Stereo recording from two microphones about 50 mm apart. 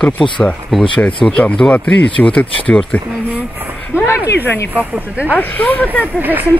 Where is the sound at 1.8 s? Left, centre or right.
Left.